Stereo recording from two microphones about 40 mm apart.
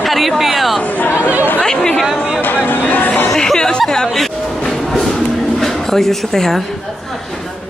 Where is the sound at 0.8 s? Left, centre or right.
Left.